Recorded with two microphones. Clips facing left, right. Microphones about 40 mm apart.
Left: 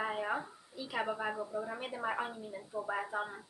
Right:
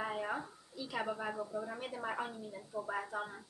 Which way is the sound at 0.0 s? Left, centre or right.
Centre.